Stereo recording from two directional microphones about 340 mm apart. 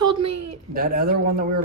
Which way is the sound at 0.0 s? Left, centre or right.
Centre.